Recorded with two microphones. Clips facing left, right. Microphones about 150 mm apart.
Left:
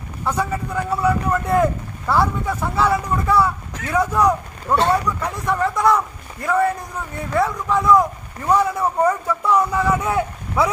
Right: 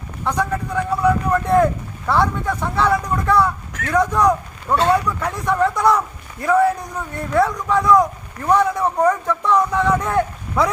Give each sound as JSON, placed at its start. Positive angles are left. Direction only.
{"t": 0.2, "sound": "speech", "side_deg": 5}